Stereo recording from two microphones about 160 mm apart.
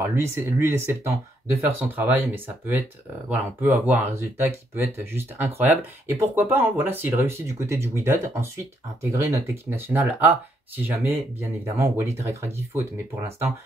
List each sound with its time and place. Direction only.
0.1 s speech: 15° right (ahead or behind)